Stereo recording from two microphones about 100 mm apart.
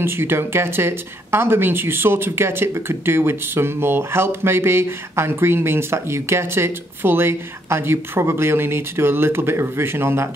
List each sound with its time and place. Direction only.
0.0 s speech: 25° right (ahead or behind)